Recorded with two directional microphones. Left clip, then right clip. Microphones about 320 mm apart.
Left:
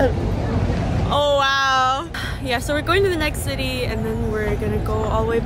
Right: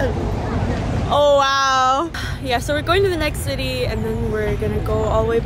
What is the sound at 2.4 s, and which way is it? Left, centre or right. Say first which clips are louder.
Speech: right 2 dB; centre.